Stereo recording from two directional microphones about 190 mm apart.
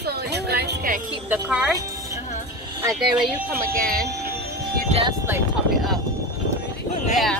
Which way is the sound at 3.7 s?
50° right (ahead or behind).